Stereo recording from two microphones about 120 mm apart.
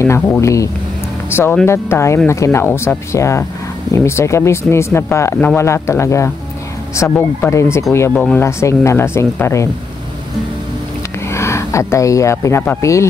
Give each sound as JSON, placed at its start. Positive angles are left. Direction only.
{"t": 0.0, "sound": "speech", "side_deg": 20}
{"t": 11.2, "sound": "speech", "side_deg": 25}